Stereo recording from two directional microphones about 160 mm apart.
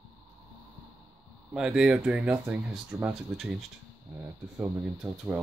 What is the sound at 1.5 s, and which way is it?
Speech, 5° right (ahead or behind).